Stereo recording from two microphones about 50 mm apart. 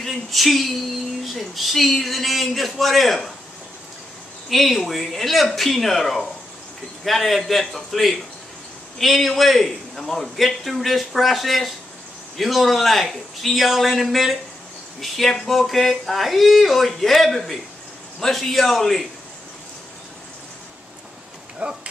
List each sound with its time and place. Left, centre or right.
0.0 s a man's voice: centre
4.5 s a man's voice: centre
21.6 s speech: right